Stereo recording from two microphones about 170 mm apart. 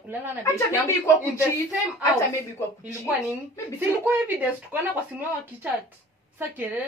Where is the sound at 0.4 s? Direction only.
15° left (ahead or behind).